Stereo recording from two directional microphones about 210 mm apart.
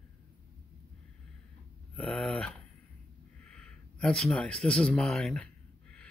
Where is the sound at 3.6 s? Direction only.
5° left (ahead or behind).